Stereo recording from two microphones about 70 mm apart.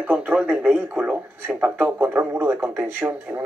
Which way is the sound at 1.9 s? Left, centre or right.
Right.